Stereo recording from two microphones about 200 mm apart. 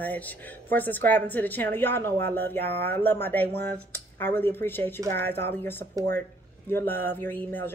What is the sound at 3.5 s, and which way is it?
Speech, 55° right (ahead or behind).